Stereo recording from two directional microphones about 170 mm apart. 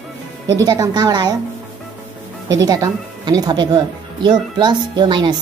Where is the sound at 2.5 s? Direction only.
20° right (ahead or behind).